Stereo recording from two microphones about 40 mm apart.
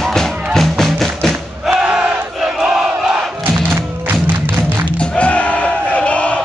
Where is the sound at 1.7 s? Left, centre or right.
Right.